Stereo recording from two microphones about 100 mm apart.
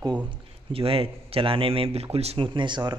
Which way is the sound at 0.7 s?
65° right (ahead or behind).